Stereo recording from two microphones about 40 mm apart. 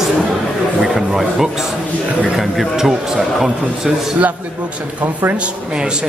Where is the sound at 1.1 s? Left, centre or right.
Centre.